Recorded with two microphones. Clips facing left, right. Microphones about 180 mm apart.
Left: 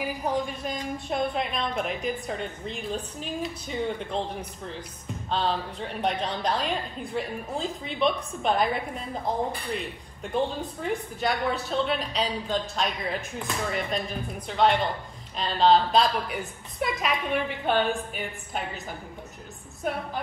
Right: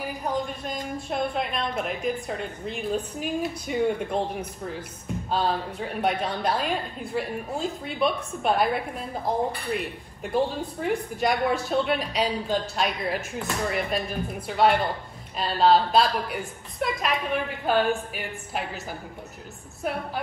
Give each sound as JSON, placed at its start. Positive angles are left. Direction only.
{"t": 0.2, "sound": "a woman's voice", "side_deg": 0}
{"t": 5.3, "sound": "a woman's voice", "side_deg": -5}